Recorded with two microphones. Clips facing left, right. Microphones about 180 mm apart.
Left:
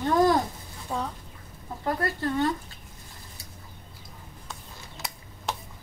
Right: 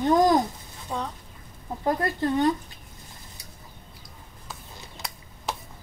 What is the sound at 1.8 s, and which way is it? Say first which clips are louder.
Speech: right 3 dB; 20° right (ahead or behind).